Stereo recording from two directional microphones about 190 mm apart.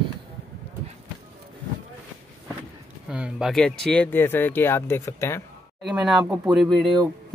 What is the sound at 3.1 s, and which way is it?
Speech, 5° right (ahead or behind).